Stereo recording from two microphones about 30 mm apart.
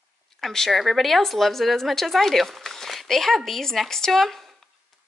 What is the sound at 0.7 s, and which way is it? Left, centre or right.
A woman's voice, centre.